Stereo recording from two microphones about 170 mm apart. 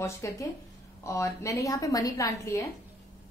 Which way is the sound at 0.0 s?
15° left (ahead or behind).